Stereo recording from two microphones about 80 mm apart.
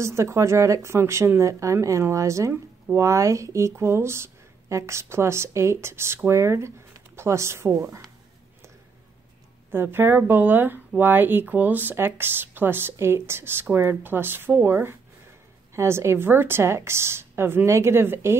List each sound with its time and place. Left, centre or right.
0.0 s speech: right
9.7 s speech: right